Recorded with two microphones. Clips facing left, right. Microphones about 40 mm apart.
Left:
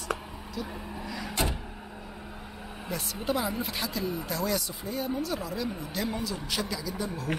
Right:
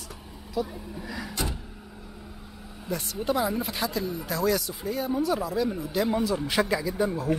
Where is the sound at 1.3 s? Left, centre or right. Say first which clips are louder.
Left 3 dB; left.